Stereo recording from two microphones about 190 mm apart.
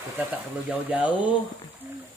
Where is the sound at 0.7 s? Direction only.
10° right (ahead or behind).